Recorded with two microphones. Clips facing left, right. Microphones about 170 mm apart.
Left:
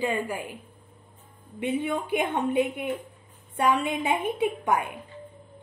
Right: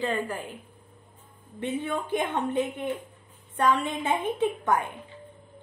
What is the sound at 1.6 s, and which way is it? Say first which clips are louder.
A woman's voice: left 2 dB; 10° left (ahead or behind).